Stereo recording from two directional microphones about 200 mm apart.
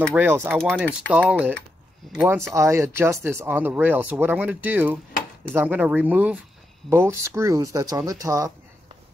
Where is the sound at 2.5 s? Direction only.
15° right (ahead or behind).